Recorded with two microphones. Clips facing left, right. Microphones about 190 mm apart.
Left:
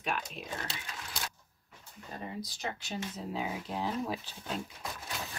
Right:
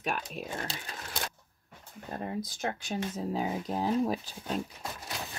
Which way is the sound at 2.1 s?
50° right (ahead or behind).